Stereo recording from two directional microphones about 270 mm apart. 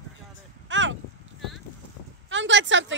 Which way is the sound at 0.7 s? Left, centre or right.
Right.